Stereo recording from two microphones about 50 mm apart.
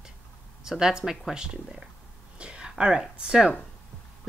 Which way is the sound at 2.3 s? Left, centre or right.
Right.